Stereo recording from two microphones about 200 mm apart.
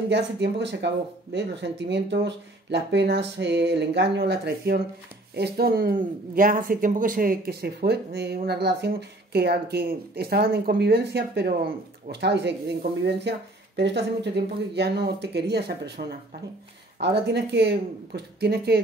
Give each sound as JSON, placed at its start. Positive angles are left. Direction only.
{"t": 0.1, "sound": "speech", "side_deg": -60}